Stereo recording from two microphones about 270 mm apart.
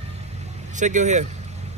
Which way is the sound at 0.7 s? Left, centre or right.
Right.